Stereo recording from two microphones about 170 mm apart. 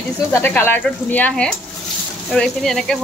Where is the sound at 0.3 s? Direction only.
10° left (ahead or behind).